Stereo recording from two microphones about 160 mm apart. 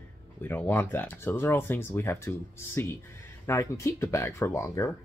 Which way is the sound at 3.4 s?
15° left (ahead or behind).